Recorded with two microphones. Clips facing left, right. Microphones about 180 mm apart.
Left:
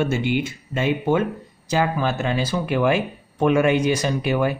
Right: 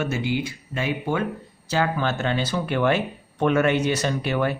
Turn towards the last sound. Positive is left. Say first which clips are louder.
# left 3 dB
turn(degrees=10)  # may be behind; listen again after turning